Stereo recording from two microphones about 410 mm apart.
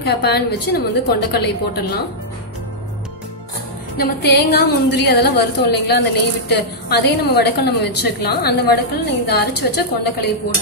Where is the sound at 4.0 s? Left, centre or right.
Left.